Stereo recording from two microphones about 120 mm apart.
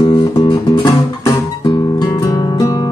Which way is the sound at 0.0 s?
35° left (ahead or behind).